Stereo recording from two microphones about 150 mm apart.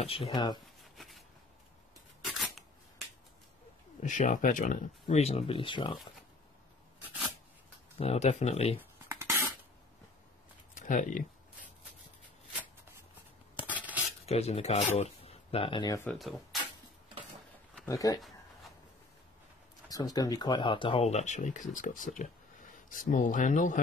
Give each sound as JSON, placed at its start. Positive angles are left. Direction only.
{"t": 0.0, "sound": "speech", "side_deg": 40}
{"t": 0.9, "sound": "a sound", "side_deg": 0}
{"t": 2.2, "sound": "a sound", "side_deg": 0}
{"t": 4.0, "sound": "speech", "side_deg": 55}
{"t": 5.0, "sound": "speech", "side_deg": 45}
{"t": 8.0, "sound": "speech", "side_deg": 45}
{"t": 10.8, "sound": "speech", "side_deg": 55}
{"t": 13.6, "sound": "a sound", "side_deg": -10}
{"t": 14.2, "sound": "speech", "side_deg": 45}
{"t": 16.1, "sound": "speech", "side_deg": 0}
{"t": 17.8, "sound": "speech", "side_deg": 25}
{"t": 19.9, "sound": "speech", "side_deg": 25}
{"t": 21.1, "sound": "speech", "side_deg": 55}